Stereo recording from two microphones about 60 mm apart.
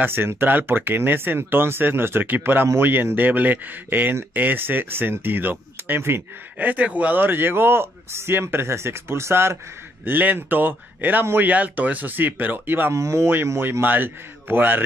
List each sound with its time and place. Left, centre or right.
0.0 s speech: right
6.6 s speech: right
10.0 s speech: right
12.9 s speech: right
13.5 s speech: right